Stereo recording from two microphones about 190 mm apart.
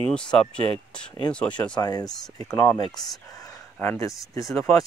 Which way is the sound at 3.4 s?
15° left (ahead or behind).